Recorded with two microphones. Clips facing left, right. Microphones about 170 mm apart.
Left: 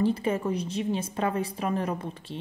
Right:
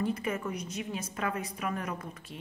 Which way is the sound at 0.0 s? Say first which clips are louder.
Left 6 dB; 30° left (ahead or behind).